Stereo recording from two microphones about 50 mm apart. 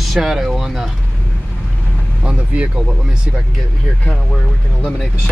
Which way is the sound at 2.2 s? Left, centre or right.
Right.